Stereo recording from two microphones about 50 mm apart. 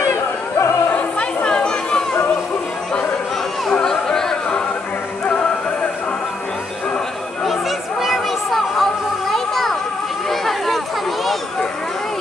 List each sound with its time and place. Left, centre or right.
0.1 s yodeling: left
0.9 s chatter: centre
3.8 s music: centre
5.2 s music: left
8.0 s a sound: centre
9.3 s children playing: centre